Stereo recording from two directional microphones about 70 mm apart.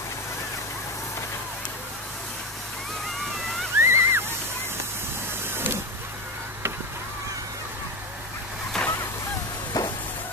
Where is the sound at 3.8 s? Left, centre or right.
Right.